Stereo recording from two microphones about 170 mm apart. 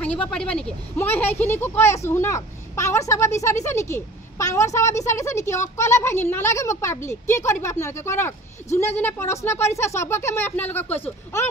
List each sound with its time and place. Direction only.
0.0 s speech: 5° left (ahead or behind)